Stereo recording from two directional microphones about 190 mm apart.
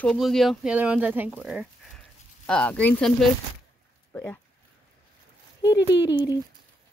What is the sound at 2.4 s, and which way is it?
Speech, 5° left (ahead or behind).